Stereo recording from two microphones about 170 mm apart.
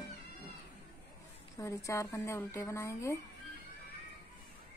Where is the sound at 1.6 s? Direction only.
20° left (ahead or behind).